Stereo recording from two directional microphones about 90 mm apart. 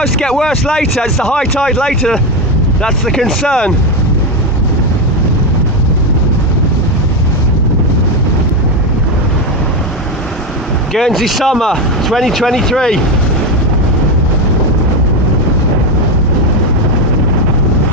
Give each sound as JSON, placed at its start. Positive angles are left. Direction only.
{"t": 0.0, "sound": "speech", "side_deg": 5}
{"t": 11.0, "sound": "speech", "side_deg": 0}